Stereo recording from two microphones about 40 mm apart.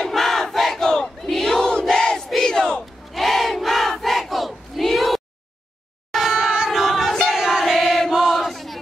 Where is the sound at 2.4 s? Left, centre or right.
Centre.